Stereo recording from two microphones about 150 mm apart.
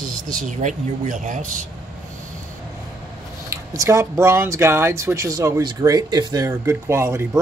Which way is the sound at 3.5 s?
20° right (ahead or behind).